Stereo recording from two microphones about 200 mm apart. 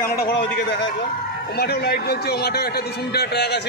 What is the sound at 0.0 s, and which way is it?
Speech, 55° left (ahead or behind).